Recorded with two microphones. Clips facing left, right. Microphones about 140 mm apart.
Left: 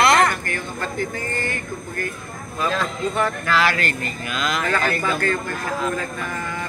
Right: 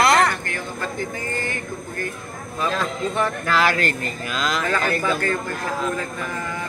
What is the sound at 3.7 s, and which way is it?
Speech, 35° right (ahead or behind).